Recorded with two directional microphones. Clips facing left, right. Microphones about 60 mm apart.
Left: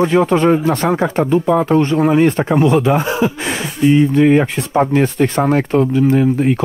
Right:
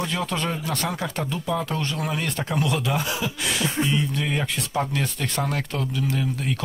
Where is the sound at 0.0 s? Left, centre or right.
Left.